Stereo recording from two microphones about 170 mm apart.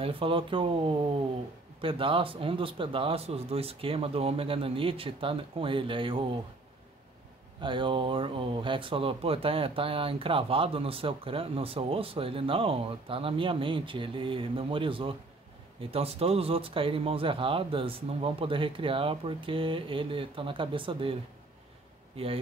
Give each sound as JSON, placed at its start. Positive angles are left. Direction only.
{"t": 0.0, "sound": "speech", "side_deg": -30}
{"t": 7.6, "sound": "a man's voice", "side_deg": -30}